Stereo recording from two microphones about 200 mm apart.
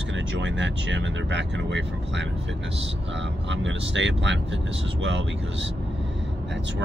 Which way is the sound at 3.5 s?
65° right (ahead or behind).